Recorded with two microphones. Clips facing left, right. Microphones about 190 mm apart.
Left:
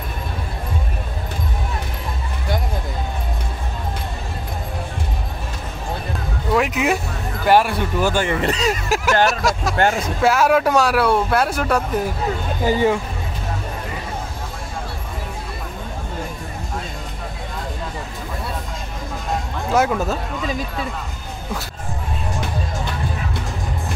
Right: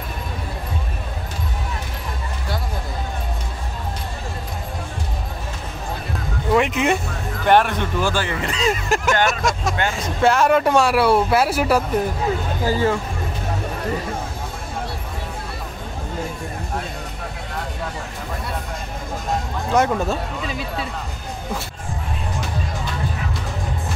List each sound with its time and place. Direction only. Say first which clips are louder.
6.5 s speech: right 1 dB; centre (ahead or behind)
8.1 s speech: left 3 dB; 20° left (ahead or behind)
8.8 s speech: left 4 dB; 5° left (ahead or behind)
9.8 s speech: left 6 dB; 50° left (ahead or behind)
10.2 s speech: even; 5° left (ahead or behind)
12.6 s speech: left 3 dB; 20° left (ahead or behind)
19.7 s speech: even; 5° left (ahead or behind)